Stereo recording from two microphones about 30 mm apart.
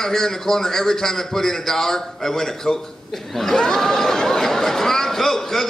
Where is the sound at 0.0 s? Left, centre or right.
Centre.